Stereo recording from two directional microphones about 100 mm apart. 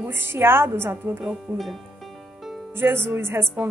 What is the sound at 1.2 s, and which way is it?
Speech, centre (ahead or behind).